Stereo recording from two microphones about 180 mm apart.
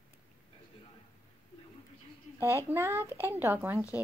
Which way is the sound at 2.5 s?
15° right (ahead or behind).